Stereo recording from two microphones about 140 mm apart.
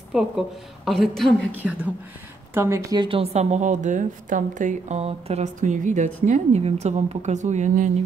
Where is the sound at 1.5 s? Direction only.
10° right (ahead or behind).